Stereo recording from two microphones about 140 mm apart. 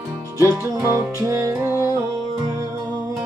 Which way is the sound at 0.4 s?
20° right (ahead or behind).